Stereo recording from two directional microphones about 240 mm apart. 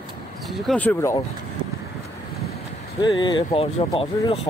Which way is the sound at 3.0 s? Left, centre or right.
Centre.